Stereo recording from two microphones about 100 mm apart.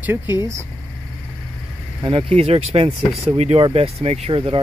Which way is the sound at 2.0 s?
65° right (ahead or behind).